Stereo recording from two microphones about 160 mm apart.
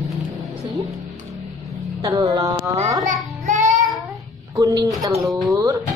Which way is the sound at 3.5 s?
50° right (ahead or behind).